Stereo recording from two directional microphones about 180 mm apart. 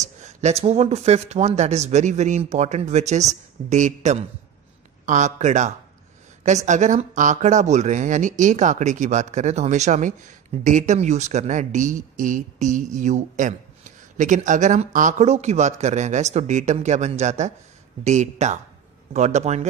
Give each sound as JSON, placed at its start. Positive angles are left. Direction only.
{"t": 0.2, "sound": "speech", "side_deg": -40}